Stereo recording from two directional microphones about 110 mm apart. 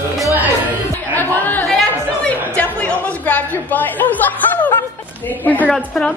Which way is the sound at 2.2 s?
10° left (ahead or behind).